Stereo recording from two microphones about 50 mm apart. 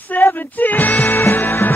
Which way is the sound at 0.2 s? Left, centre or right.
Left.